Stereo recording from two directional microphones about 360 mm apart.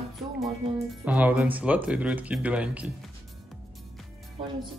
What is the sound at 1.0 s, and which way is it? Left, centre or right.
Speech, centre.